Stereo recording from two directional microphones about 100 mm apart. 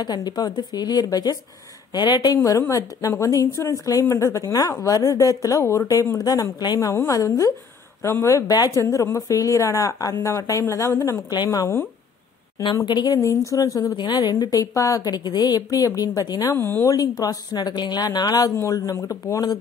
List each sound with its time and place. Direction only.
0.0 s speech: 45° left (ahead or behind)
2.3 s a woman's voice: 30° left (ahead or behind)
12.8 s a woman's voice: 45° left (ahead or behind)
13.9 s a woman's voice: 45° left (ahead or behind)
16.5 s speech: 20° left (ahead or behind)
16.8 s a woman's voice: 40° left (ahead or behind)